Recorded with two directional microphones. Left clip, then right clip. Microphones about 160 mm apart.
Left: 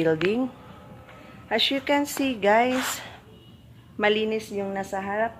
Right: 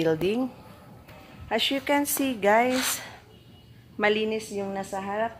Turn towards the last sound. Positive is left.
turn(degrees=-15)  # may be behind; listen again after turning